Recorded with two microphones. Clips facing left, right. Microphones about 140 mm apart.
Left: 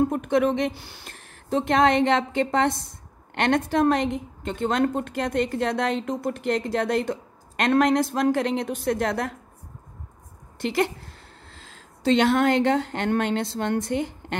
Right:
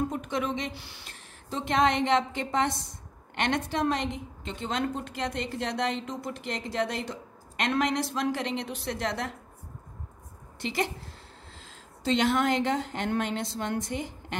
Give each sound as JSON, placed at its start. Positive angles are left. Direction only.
{"t": 0.1, "sound": "a woman's voice", "side_deg": 55}
{"t": 10.6, "sound": "speech", "side_deg": 60}